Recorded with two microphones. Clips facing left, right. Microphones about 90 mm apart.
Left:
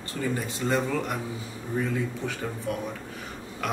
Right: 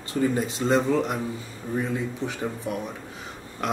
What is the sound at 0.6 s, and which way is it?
Speech, 30° right (ahead or behind).